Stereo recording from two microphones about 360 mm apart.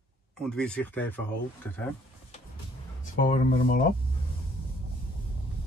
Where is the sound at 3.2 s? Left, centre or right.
Left.